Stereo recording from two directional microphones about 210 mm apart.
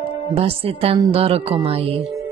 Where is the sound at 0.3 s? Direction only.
25° right (ahead or behind).